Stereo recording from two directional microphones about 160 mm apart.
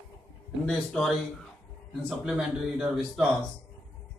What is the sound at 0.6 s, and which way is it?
Speech, 5° left (ahead or behind).